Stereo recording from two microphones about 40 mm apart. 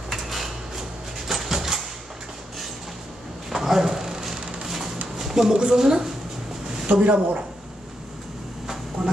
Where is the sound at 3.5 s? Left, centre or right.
Centre.